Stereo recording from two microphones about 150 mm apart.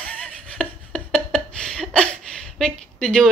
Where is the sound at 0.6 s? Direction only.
5° left (ahead or behind).